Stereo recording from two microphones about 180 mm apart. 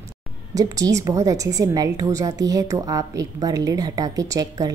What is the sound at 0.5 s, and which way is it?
A woman's voice, 20° right (ahead or behind).